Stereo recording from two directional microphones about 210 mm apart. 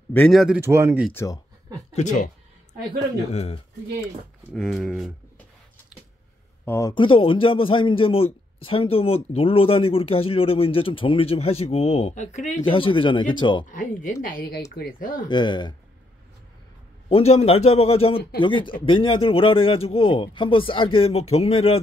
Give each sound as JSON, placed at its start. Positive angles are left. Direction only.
{"t": 0.1, "sound": "speech", "side_deg": 5}
{"t": 0.6, "sound": "speech", "side_deg": -10}
{"t": 1.1, "sound": "speech", "side_deg": 15}
{"t": 2.0, "sound": "speech", "side_deg": 35}
{"t": 3.3, "sound": "speech", "side_deg": 30}
{"t": 4.6, "sound": "speech", "side_deg": 0}
{"t": 6.6, "sound": "speech", "side_deg": 10}
{"t": 6.9, "sound": "speech", "side_deg": 25}
{"t": 13.7, "sound": "speech", "side_deg": 40}
{"t": 15.2, "sound": "speech", "side_deg": 20}
{"t": 17.1, "sound": "speech", "side_deg": 30}